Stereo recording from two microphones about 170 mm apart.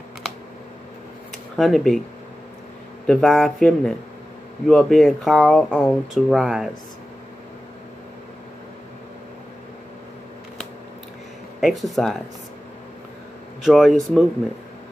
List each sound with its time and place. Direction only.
1.6 s speech: centre (ahead or behind)
3.1 s speech: centre (ahead or behind)
11.6 s speech: centre (ahead or behind)
13.6 s speech: centre (ahead or behind)